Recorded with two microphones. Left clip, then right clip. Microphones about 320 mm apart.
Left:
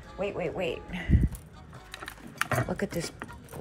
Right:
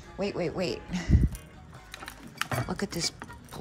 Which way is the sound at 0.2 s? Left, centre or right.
Centre.